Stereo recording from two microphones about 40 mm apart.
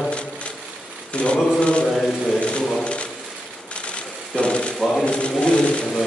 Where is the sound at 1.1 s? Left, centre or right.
Left.